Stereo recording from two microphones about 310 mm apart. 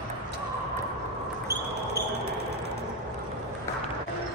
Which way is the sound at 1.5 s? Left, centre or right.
Centre.